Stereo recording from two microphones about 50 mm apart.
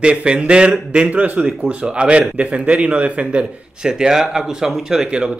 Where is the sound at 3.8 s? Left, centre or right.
Centre.